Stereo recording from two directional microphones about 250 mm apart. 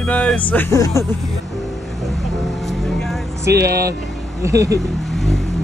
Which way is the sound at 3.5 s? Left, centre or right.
Right.